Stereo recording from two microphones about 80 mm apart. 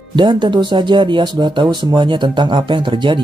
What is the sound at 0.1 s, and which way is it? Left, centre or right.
Speech, right.